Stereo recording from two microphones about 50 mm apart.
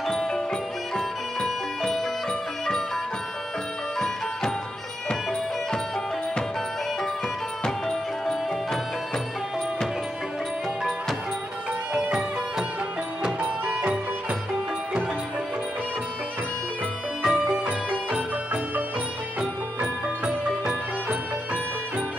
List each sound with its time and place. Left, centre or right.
0.0 s music: centre
7.6 s music: centre
12.1 s music: centre
17.2 s music: centre
17.6 s music: right
20.2 s music: centre